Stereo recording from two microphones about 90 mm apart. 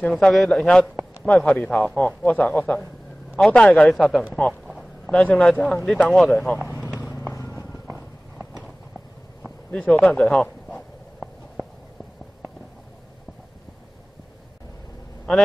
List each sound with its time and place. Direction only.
0.1 s a man's voice: centre (ahead or behind)
4.3 s a man's voice: 15° left (ahead or behind)
7.0 s vehicle: 25° left (ahead or behind)
9.9 s a sound: 5° left (ahead or behind)